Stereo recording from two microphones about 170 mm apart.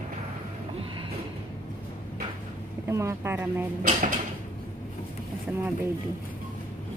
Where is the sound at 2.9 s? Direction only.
15° right (ahead or behind).